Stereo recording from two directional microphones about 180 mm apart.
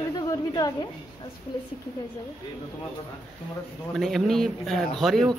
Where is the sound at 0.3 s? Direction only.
20° left (ahead or behind).